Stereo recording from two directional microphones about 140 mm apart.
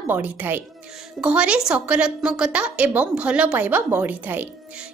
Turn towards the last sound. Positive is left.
turn(degrees=-10)  # may be behind; listen again after turning